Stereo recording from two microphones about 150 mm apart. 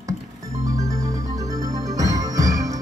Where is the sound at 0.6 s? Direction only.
25° right (ahead or behind).